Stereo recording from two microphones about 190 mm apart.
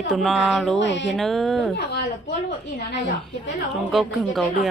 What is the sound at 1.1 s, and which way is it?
Speech, centre (ahead or behind).